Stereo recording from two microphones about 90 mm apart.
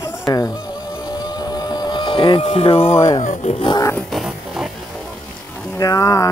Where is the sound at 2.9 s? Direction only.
35° left (ahead or behind).